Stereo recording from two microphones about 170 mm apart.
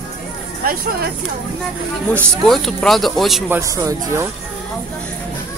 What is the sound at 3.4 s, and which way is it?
Speech, 15° right (ahead or behind).